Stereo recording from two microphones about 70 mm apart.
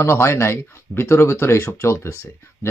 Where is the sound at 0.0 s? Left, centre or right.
Left.